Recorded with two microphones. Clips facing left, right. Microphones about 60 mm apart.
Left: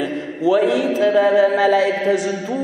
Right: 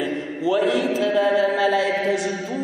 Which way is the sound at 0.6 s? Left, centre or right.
Centre.